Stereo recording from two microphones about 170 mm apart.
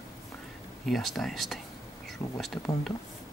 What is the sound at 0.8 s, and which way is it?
Speech, centre (ahead or behind).